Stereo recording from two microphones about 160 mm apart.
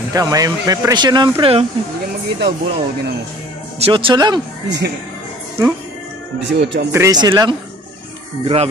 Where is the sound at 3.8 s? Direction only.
35° right (ahead or behind).